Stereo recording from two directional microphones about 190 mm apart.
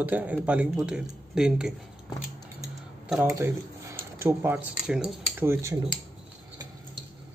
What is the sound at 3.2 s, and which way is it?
Speech, 15° right (ahead or behind).